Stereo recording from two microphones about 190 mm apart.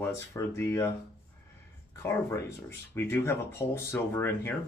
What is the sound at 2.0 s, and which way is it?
Speech, 15° left (ahead or behind).